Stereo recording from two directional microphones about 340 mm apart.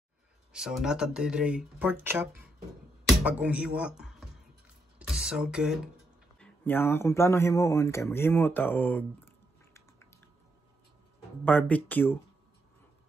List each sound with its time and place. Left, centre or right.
0.5 s speech: centre
4.9 s a sound: centre
6.4 s speech: centre
11.4 s speech: centre